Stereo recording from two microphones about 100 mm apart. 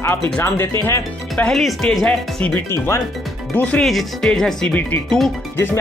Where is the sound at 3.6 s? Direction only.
15° left (ahead or behind).